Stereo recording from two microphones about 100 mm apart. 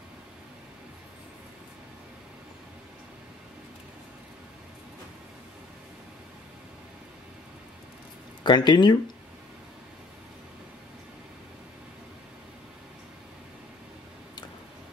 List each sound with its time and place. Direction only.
8.5 s speech: 50° left (ahead or behind)